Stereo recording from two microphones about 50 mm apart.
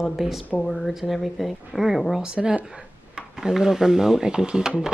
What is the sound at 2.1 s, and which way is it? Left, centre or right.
A woman's voice, centre.